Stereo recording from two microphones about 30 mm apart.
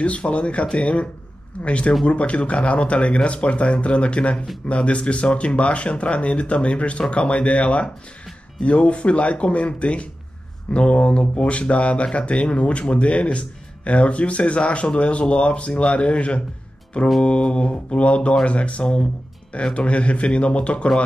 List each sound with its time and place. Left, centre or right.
0.0 s speech: left